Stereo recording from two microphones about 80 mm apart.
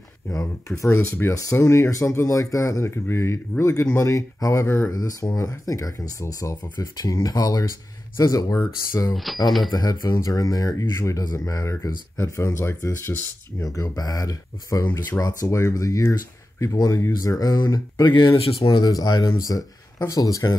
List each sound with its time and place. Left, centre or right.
0.3 s speech: left
1.3 s speech: left
4.9 s speech: left
9.1 s speech: centre
9.7 s speech: left
10.2 s speech: left
18.1 s speech: left
19.2 s speech: left